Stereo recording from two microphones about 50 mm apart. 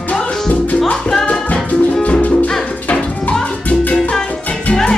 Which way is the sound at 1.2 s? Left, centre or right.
Left.